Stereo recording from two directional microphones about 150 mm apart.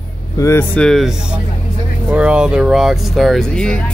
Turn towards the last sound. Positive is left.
turn(degrees=5)  # may be behind; listen again after turning